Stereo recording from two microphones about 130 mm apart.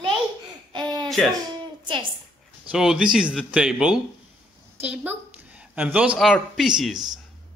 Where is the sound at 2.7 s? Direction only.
5° right (ahead or behind).